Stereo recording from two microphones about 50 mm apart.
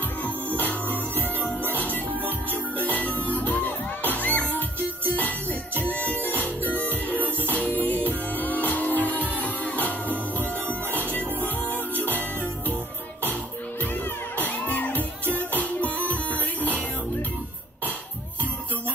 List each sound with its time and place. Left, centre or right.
0.2 s music: left
14.3 s music: left